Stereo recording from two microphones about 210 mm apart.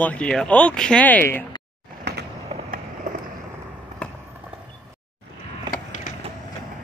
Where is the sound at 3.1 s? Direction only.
40° right (ahead or behind).